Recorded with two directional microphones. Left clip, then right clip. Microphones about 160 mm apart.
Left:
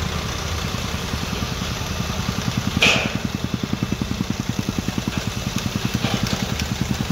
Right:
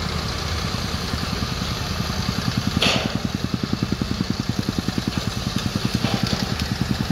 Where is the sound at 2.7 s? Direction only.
20° right (ahead or behind).